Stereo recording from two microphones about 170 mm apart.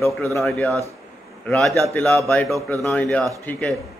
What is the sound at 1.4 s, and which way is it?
A man's voice, 5° left (ahead or behind).